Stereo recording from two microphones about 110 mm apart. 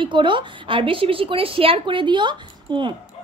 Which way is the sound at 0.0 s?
45° right (ahead or behind).